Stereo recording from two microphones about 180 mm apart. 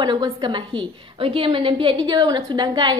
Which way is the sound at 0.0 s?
25° right (ahead or behind).